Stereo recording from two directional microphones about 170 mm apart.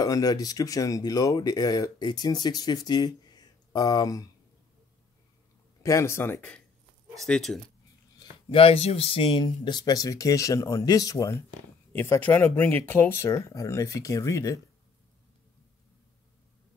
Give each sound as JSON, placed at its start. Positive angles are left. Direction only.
{"t": 0.0, "sound": "speech", "side_deg": 20}
{"t": 5.8, "sound": "speech", "side_deg": 20}
{"t": 8.2, "sound": "speech", "side_deg": 30}